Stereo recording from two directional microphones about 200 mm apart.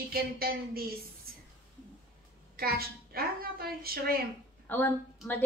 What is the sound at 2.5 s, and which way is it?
A woman's voice, 50° right (ahead or behind).